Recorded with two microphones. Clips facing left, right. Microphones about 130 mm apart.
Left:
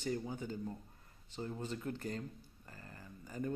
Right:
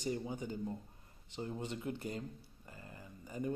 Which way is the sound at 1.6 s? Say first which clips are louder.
Even; 15° right (ahead or behind).